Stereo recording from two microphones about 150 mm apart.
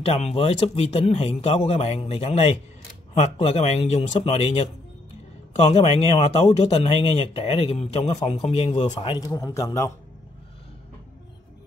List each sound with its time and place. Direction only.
0.0 s speech: 45° left (ahead or behind)
9.2 s a man's voice: 20° left (ahead or behind)